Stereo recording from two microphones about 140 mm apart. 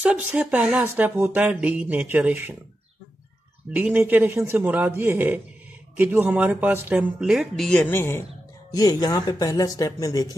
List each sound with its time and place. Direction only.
0.0 s speech: 10° right (ahead or behind)
3.7 s speech: 10° right (ahead or behind); by 8.3 s 15° left (ahead or behind)
8.7 s speech: 25° left (ahead or behind)